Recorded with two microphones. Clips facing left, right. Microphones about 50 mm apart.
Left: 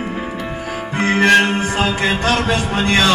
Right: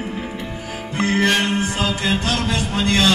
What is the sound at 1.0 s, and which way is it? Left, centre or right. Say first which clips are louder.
Music: left 6 dB; left.